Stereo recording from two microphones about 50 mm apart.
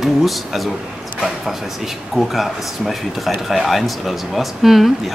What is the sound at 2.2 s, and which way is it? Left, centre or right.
Speech, centre.